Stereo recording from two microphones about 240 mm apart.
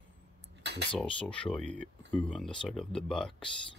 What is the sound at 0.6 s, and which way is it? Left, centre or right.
Cutlery, right.